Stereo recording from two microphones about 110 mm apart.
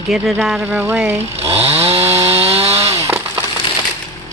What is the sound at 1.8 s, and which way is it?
Chainsaw, 65° right (ahead or behind).